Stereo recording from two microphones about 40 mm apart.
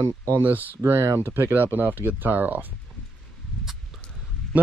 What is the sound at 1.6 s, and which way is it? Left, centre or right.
Speech, right.